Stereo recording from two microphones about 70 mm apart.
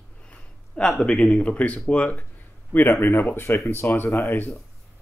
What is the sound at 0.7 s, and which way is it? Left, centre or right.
Speech, centre.